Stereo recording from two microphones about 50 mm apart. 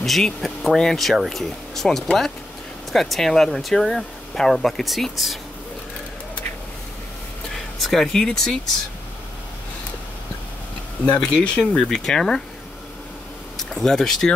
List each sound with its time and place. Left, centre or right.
0.0 s speech: centre
7.5 s speech: centre
11.1 s speech: centre
13.6 s speech: centre